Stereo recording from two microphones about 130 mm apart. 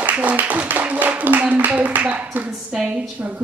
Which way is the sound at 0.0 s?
10° right (ahead or behind).